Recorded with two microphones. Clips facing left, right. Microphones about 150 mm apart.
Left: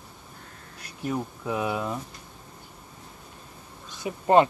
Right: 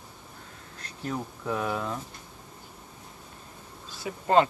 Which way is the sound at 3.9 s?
20° left (ahead or behind).